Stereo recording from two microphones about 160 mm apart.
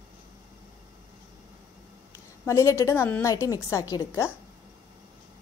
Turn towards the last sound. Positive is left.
turn(degrees=20)  # may be behind; listen again after turning